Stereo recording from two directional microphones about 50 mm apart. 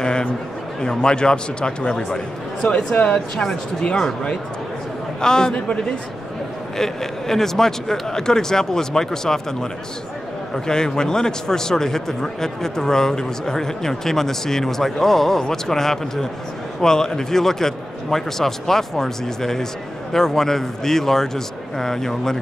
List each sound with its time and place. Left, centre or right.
0.0 s a sound: centre
0.7 s a man's voice: centre
6.8 s a man's voice: centre